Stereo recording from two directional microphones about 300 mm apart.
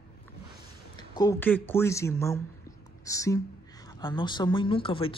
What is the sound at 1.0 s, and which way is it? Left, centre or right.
Speech, centre.